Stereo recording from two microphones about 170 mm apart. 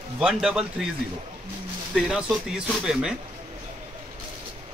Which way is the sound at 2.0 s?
5° right (ahead or behind).